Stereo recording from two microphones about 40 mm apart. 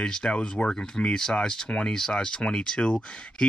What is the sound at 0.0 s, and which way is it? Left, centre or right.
Speech, centre.